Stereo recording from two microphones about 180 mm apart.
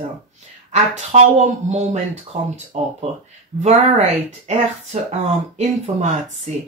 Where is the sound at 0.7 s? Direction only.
40° right (ahead or behind).